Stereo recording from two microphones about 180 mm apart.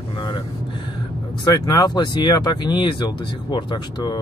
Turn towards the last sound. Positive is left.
turn(degrees=25)  # may be behind; listen again after turning